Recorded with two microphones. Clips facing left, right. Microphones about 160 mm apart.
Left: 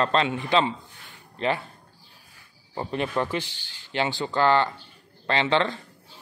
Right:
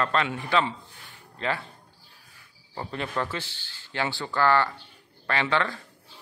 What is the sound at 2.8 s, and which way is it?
Speech, 20° left (ahead or behind).